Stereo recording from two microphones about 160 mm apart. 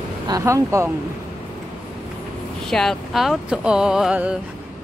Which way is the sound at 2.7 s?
Centre (ahead or behind).